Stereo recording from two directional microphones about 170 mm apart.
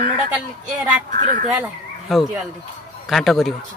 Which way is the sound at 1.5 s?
Centre (ahead or behind).